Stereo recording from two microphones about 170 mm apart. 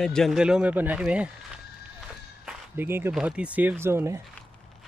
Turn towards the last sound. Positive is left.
turn(degrees=-15)  # may be behind; listen again after turning